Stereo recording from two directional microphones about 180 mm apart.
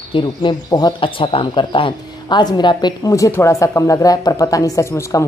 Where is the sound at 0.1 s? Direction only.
25° left (ahead or behind).